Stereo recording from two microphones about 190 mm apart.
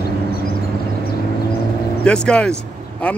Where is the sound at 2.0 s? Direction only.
5° left (ahead or behind).